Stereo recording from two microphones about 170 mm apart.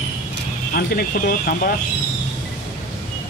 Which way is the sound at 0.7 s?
55° left (ahead or behind).